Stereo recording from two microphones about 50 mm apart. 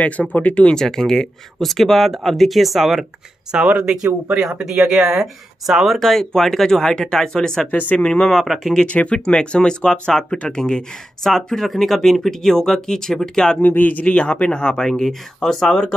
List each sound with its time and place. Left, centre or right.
0.0 s speech: left
0.7 s speech: centre
3.6 s speech: right
4.4 s speech: centre
5.9 s speech: centre
7.7 s speech: left
8.0 s speech: centre
8.3 s speech: centre
8.8 s speech: left
13.6 s speech: left; by 14.9 s centre
14.9 s speech: centre